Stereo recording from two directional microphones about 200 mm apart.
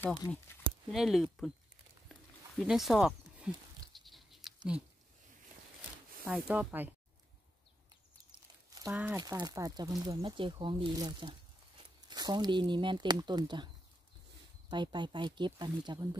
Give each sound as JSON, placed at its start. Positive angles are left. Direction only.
{"t": 0.0, "sound": "speech", "side_deg": 10}
{"t": 0.7, "sound": "speech", "side_deg": 0}
{"t": 2.6, "sound": "a sound", "side_deg": 0}
{"t": 6.2, "sound": "speech", "side_deg": -5}
{"t": 8.9, "sound": "speech", "side_deg": -10}
{"t": 9.2, "sound": "speech", "side_deg": -20}
{"t": 14.7, "sound": "speech", "side_deg": -25}